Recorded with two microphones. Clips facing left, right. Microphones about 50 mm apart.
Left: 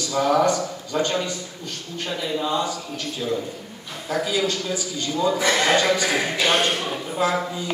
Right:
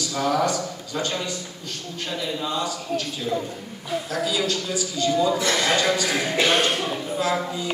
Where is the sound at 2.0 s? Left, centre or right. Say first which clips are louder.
Left 3 dB; centre.